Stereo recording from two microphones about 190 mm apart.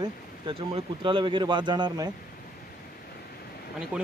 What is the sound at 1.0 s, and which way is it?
A man's voice, 25° right (ahead or behind).